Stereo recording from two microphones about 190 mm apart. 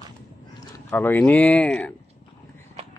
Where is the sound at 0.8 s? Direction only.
10° left (ahead or behind).